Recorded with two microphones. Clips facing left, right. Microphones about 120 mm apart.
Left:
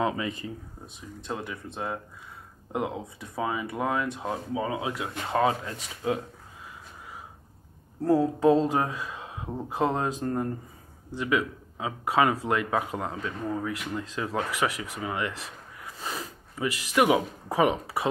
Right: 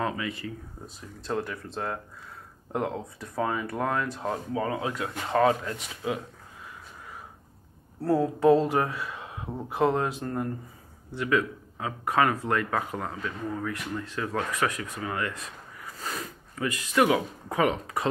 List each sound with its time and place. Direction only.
0.0 s speech: 20° left (ahead or behind)
1.2 s speech: centre (ahead or behind)
2.7 s speech: 10° left (ahead or behind)
8.0 s speech: 15° left (ahead or behind)
16.0 s a sound: 20° left (ahead or behind)
16.9 s speech: 15° left (ahead or behind)